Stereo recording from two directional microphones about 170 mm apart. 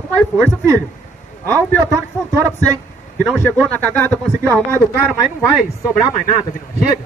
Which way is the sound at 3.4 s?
10° left (ahead or behind).